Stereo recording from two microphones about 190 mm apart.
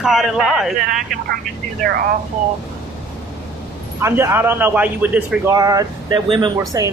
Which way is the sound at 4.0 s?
15° right (ahead or behind).